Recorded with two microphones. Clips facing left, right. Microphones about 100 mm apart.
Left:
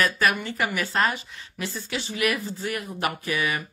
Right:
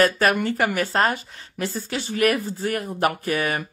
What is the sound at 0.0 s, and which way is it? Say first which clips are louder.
A woman's voice: right 5 dB; 40° right (ahead or behind).